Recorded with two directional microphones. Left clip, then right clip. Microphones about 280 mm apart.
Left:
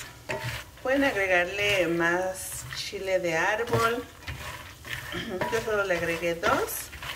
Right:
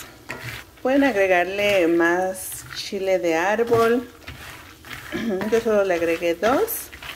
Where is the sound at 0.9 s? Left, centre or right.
Right.